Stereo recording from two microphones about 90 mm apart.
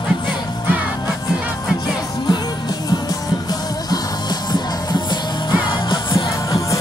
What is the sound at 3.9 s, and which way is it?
Music, 50° left (ahead or behind).